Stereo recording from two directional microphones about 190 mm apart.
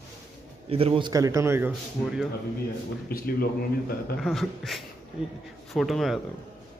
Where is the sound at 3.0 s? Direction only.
55° left (ahead or behind).